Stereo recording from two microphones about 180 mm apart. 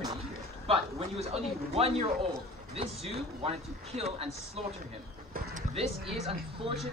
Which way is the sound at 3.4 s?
35° right (ahead or behind).